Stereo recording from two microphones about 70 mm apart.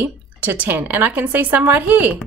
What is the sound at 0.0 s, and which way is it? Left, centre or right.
Speech, right.